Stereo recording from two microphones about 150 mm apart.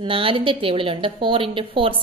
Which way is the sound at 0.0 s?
35° right (ahead or behind).